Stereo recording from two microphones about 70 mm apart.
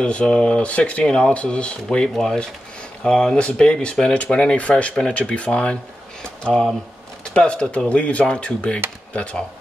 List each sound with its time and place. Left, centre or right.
0.0 s speech: centre
7.2 s speech: centre